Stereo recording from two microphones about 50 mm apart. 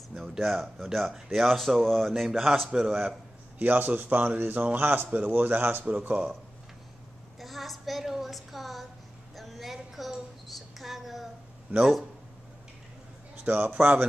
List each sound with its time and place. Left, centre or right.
0.4 s speech: centre
3.5 s a man's voice: right
5.9 s speech: right
7.3 s a woman's voice: centre
9.3 s a sound: centre
11.7 s a man's voice: right
13.4 s a man's voice: right